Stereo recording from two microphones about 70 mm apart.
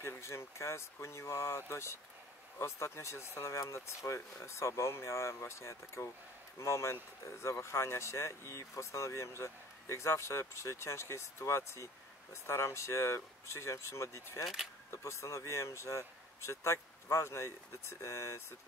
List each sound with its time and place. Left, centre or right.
0.0 s speech: left
14.4 s speech: centre
14.9 s speech: left